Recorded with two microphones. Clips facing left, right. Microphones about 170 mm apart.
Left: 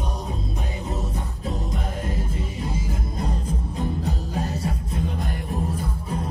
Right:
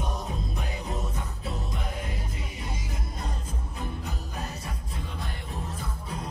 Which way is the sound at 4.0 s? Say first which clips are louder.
Left 9 dB; 35° left (ahead or behind).